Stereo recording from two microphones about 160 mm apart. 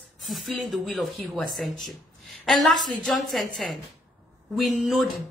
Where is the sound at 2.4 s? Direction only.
Centre (ahead or behind).